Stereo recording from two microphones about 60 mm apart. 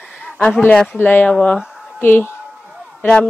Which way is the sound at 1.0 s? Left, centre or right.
Left.